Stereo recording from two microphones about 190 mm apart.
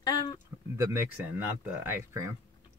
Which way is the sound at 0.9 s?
10° right (ahead or behind).